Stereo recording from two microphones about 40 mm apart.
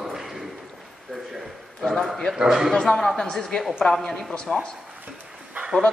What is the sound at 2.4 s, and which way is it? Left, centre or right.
Speech, centre.